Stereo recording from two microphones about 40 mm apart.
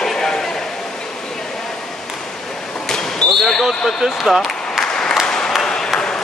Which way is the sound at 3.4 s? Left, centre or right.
Centre.